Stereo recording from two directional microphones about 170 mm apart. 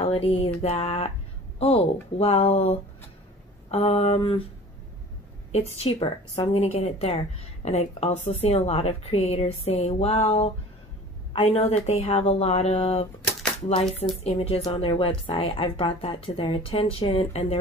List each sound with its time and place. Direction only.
0.0 s a woman's voice: 35° left (ahead or behind)
5.5 s a woman's voice: 35° left (ahead or behind)
14.2 s a woman's voice: 35° left (ahead or behind)